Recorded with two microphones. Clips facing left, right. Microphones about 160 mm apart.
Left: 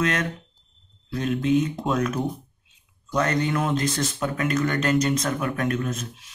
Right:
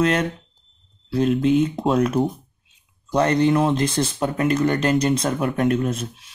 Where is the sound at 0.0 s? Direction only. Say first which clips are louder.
Right 5 dB; 30° right (ahead or behind).